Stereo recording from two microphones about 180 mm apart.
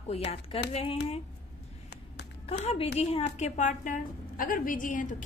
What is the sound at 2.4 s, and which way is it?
A woman's voice, 35° left (ahead or behind).